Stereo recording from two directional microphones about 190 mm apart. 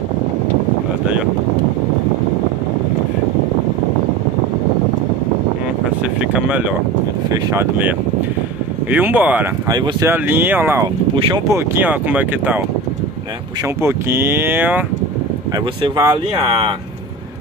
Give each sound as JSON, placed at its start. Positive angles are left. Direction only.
{"t": 5.9, "sound": "a sound", "side_deg": -5}
{"t": 7.2, "sound": "speech", "side_deg": -20}
{"t": 8.9, "sound": "speech", "side_deg": -10}
{"t": 11.1, "sound": "speech", "side_deg": -25}
{"t": 13.7, "sound": "speech", "side_deg": -15}
{"t": 15.5, "sound": "speech", "side_deg": -25}